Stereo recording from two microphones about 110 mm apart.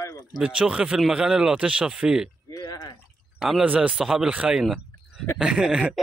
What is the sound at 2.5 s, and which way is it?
Drip, 35° left (ahead or behind).